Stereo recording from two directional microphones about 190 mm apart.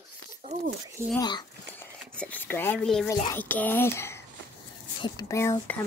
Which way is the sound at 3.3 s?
10° left (ahead or behind).